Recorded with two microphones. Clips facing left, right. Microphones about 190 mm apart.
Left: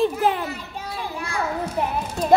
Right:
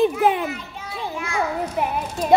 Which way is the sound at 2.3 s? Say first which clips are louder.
Even; centre (ahead or behind).